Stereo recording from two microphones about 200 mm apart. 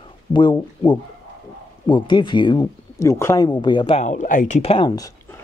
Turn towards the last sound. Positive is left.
turn(degrees=20)  # may be behind; listen again after turning